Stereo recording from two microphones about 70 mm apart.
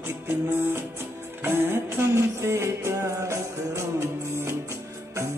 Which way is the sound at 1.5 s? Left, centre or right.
Right.